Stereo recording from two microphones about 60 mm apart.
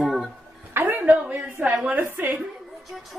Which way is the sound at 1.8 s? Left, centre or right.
Right.